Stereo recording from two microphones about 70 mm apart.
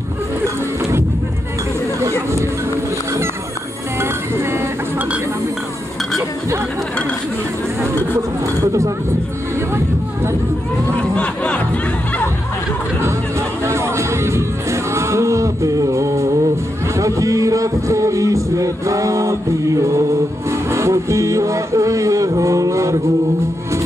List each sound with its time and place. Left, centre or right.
2.0 s chatter: right
4.0 s music: right
11.1 s music: centre
13.7 s music: right